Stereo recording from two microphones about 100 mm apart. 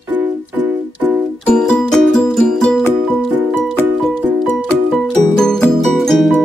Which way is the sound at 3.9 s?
5° left (ahead or behind).